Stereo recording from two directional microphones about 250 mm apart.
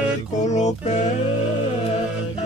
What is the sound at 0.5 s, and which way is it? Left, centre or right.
Music, left.